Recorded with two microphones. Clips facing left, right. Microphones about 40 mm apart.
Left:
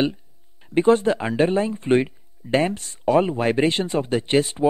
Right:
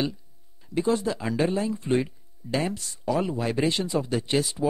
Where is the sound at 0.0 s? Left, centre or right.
Left.